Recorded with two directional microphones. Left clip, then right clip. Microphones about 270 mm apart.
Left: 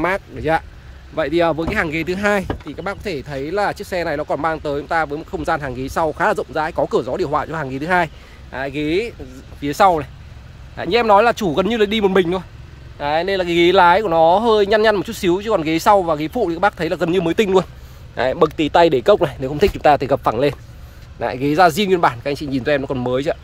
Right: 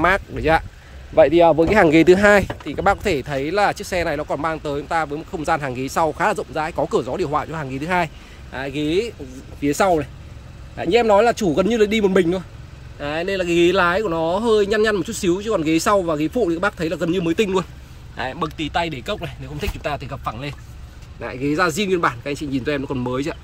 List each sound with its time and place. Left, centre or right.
0.0 s speech: centre
1.7 s speech: centre